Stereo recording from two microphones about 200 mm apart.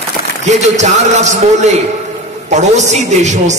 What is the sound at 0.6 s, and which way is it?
A man's voice, 35° right (ahead or behind).